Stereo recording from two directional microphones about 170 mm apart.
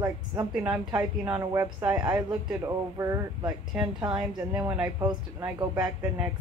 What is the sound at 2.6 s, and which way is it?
Speech, 20° right (ahead or behind).